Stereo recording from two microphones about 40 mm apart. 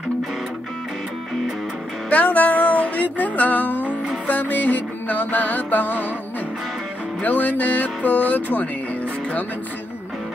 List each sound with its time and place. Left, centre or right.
2.0 s music: left
7.2 s speech: left